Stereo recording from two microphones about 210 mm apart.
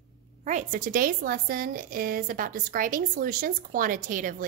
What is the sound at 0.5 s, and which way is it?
A woman's voice, 40° right (ahead or behind).